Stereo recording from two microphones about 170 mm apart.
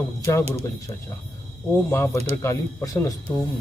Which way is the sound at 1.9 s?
15° left (ahead or behind).